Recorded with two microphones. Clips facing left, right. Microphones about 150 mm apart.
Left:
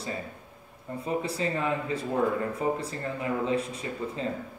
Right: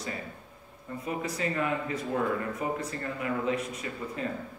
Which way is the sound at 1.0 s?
30° left (ahead or behind).